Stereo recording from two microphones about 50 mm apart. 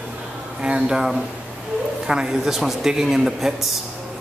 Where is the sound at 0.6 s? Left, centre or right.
Right.